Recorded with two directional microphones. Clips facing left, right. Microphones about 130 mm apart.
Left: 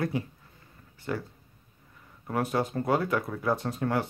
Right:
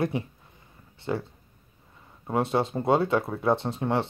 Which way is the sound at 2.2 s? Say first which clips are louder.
Right 3 dB; 25° right (ahead or behind).